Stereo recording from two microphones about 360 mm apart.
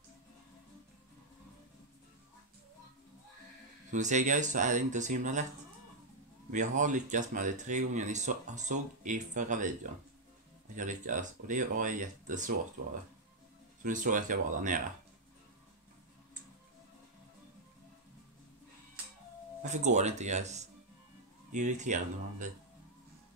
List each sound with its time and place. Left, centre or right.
3.9 s speech: centre
6.8 s speech: right
10.8 s speech: right
13.8 s speech: right
19.6 s speech: centre